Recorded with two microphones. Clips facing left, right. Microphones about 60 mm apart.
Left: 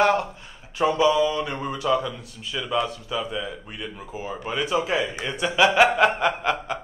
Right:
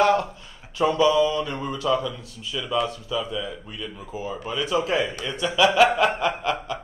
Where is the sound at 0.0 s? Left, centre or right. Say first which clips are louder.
Right 1 dB; left.